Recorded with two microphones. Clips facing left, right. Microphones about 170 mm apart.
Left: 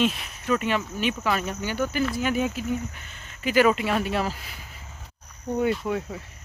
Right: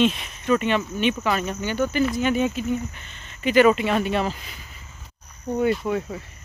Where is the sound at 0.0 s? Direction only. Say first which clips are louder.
Right 4 dB; 5° left (ahead or behind).